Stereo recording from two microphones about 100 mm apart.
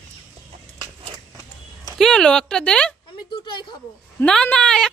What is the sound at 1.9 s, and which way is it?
Speech, 5° left (ahead or behind).